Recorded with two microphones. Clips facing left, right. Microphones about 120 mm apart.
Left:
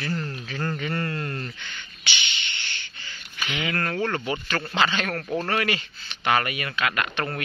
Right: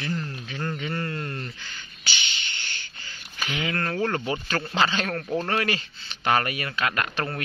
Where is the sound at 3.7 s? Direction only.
20° right (ahead or behind).